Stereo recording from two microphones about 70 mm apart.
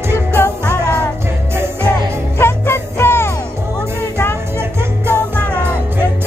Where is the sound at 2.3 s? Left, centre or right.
Left.